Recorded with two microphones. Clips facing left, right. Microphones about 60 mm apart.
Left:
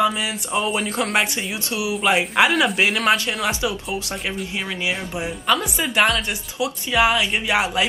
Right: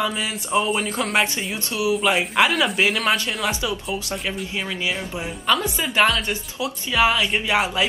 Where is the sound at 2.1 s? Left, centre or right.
Centre.